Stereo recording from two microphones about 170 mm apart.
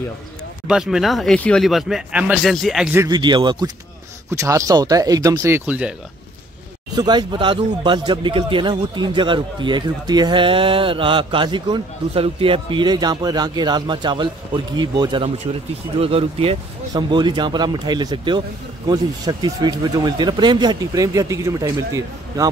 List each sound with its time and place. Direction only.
0.7 s speech: 5° right (ahead or behind)
3.0 s a man's voice: 25° right (ahead or behind); by 5.9 s 5° right (ahead or behind)
7.0 s a man's voice: 25° right (ahead or behind)